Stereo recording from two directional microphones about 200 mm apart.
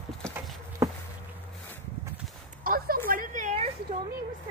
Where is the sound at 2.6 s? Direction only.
45° right (ahead or behind).